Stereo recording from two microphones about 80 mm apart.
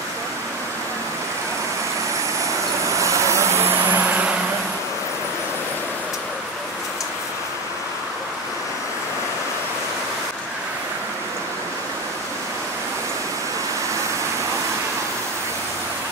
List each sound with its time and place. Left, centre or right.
3.0 s vehicle: right
4.0 s vehicle: centre